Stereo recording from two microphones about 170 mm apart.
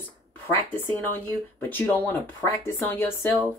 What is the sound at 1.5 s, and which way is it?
Speech, 10° left (ahead or behind).